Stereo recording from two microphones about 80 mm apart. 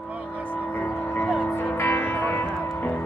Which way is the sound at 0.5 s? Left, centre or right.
Left.